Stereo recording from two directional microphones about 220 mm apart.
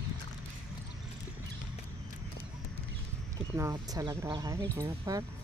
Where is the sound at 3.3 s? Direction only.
15° right (ahead or behind).